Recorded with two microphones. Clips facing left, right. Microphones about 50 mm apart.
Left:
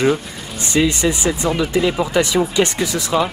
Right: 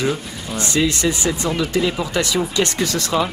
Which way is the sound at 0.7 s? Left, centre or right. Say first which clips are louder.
Left 3 dB; centre.